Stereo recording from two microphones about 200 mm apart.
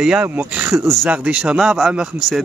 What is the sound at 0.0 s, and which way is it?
Speech, 5° right (ahead or behind).